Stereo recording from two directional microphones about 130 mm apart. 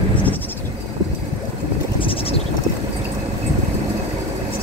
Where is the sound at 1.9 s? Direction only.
40° left (ahead or behind).